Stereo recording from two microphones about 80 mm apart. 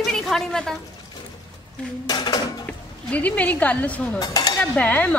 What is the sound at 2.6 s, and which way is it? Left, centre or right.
Speech, centre.